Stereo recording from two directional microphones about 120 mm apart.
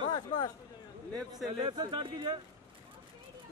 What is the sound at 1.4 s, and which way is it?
Speech, 35° right (ahead or behind).